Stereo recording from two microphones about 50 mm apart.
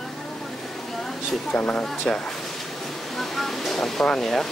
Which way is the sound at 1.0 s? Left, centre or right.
Centre.